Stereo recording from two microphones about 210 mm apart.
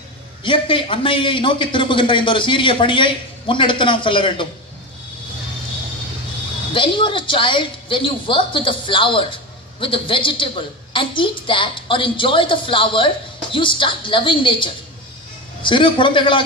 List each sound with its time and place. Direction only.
0.4 s a woman's voice: 25° left (ahead or behind)
6.7 s a woman's voice: 25° left (ahead or behind)